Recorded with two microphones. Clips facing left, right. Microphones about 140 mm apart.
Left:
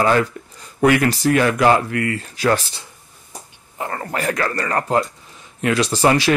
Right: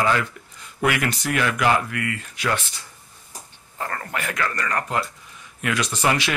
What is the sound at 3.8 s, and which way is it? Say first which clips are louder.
Speech: left 4 dB; 20° left (ahead or behind).